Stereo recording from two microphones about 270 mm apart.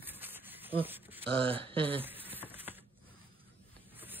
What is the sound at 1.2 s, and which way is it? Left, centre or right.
Speech, centre.